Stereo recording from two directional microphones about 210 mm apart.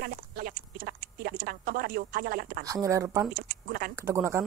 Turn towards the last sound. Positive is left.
turn(degrees=-10)  # may be behind; listen again after turning